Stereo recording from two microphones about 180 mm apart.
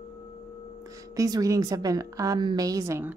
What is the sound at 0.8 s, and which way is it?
A woman's voice, 20° right (ahead or behind).